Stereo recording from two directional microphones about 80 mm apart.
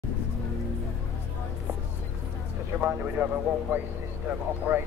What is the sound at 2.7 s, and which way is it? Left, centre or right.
Speech, right.